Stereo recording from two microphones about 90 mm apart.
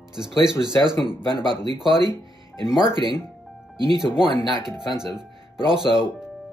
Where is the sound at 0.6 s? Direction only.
50° right (ahead or behind).